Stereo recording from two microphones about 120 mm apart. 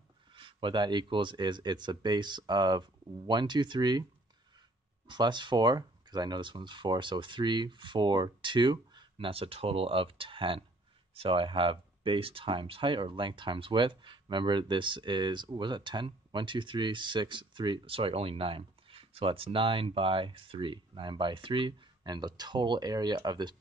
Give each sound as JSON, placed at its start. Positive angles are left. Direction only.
{"t": 0.3, "sound": "speech", "side_deg": -45}
{"t": 5.0, "sound": "speech", "side_deg": -40}